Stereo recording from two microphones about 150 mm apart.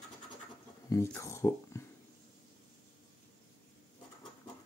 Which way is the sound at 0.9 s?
20° left (ahead or behind).